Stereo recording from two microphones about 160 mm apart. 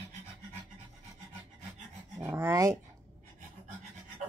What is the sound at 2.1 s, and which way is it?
Speech, 15° right (ahead or behind).